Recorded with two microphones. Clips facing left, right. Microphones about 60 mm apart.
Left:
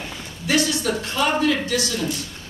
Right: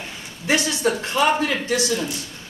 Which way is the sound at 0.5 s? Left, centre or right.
Right.